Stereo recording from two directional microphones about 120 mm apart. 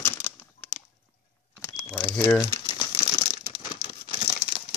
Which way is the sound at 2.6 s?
40° left (ahead or behind).